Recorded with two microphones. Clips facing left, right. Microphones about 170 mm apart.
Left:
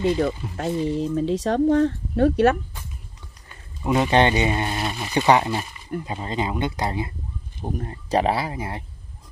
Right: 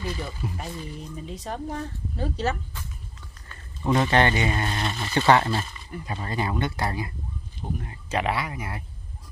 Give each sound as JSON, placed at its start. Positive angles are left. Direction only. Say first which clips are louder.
{"t": 0.2, "sound": "speech", "louder": "left 10 dB", "side_deg": 75}
{"t": 0.8, "sound": "speech", "louder": "left 14 dB", "side_deg": 90}
{"t": 3.4, "sound": "a man's voice", "louder": "left 1 dB", "side_deg": 15}
{"t": 7.6, "sound": "speech", "louder": "left 5 dB", "side_deg": 40}